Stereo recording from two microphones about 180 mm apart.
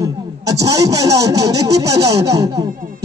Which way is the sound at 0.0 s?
20° right (ahead or behind).